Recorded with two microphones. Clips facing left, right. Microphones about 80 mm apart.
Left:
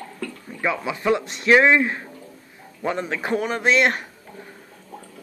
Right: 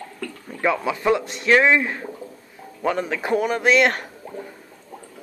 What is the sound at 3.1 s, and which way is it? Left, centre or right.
Speech, left.